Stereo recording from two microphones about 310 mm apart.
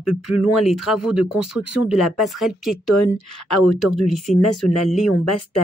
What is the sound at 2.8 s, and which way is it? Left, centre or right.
Speech, left.